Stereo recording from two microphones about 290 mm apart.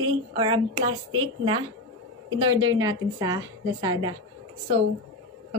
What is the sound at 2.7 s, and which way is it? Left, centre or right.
A woman's voice, centre.